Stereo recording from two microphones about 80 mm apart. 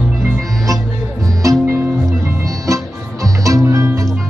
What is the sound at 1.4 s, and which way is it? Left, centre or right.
Music, right.